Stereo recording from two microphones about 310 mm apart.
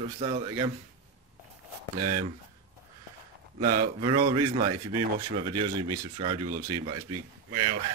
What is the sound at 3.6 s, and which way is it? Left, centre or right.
A man's voice, right.